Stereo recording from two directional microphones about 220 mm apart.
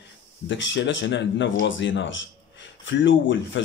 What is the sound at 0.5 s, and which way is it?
Speech, 55° left (ahead or behind).